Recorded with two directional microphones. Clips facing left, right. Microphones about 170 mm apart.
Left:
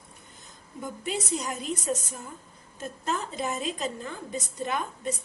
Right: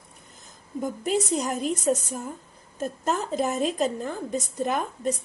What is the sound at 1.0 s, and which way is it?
Speech, 40° right (ahead or behind).